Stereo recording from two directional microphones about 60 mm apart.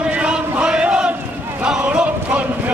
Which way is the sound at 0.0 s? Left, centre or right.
Centre.